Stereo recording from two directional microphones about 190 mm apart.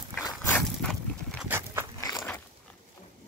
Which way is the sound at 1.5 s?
15° right (ahead or behind).